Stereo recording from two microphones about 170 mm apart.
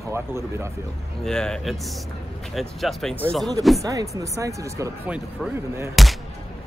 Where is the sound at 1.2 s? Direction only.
5° left (ahead or behind).